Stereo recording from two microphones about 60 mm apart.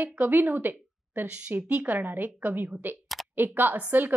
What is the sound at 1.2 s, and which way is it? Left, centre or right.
A woman's voice, right.